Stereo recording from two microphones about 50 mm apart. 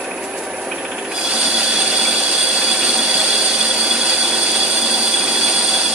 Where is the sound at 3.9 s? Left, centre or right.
Centre.